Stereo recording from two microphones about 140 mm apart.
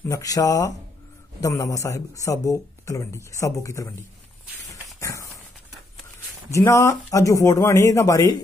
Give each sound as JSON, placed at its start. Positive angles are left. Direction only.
{"t": 0.1, "sound": "speech", "side_deg": 25}
{"t": 5.0, "sound": "horse", "side_deg": 20}
{"t": 6.5, "sound": "speech", "side_deg": 20}